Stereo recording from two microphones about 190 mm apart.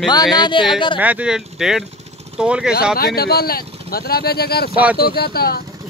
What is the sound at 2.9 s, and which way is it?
Speech, 55° left (ahead or behind).